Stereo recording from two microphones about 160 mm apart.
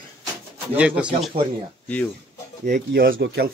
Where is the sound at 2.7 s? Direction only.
80° right.